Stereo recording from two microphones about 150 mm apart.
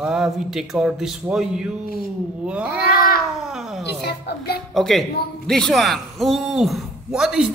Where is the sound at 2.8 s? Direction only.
85° left.